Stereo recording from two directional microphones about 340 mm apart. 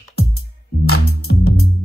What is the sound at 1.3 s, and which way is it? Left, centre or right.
Music, left.